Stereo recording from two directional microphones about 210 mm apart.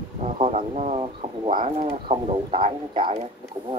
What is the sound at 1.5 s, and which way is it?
Speech, 40° right (ahead or behind).